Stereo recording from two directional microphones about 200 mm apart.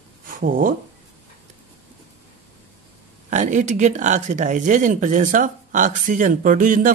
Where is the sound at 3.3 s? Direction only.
35° right (ahead or behind).